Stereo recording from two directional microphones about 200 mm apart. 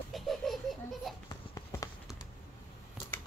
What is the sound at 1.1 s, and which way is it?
Speech, centre (ahead or behind).